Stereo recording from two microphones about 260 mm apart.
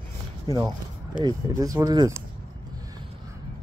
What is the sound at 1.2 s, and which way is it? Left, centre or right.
Speech, centre.